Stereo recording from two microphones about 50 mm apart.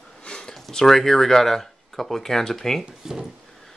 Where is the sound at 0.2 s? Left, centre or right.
Centre.